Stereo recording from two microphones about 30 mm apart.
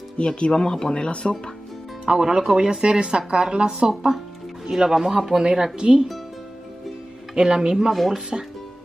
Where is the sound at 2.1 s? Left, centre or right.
Centre; by 3.9 s right.